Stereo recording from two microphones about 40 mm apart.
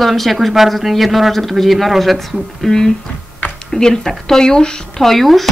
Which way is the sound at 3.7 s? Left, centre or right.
Centre.